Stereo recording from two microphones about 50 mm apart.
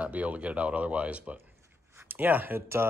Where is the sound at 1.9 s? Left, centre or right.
Right.